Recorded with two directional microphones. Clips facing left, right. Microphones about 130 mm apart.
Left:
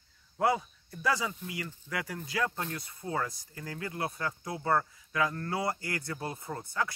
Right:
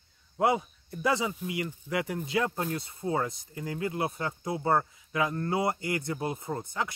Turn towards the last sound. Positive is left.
turn(degrees=-20)  # may be behind; listen again after turning